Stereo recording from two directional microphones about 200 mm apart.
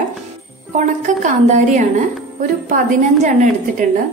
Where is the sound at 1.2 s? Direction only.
35° right (ahead or behind).